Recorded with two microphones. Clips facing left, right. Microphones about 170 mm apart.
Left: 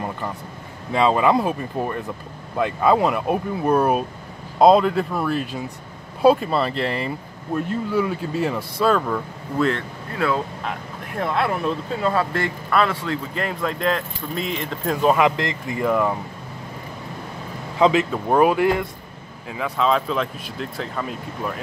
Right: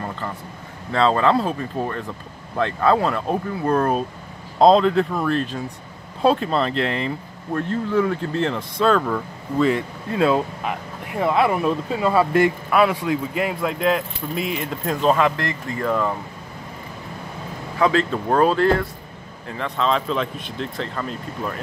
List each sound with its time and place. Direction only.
0.9 s speech: 15° left (ahead or behind)
10.1 s speech: 20° right (ahead or behind)
11.1 s speech: 5° right (ahead or behind)
15.0 s speech: 10° left (ahead or behind)
17.7 s speech: 20° left (ahead or behind)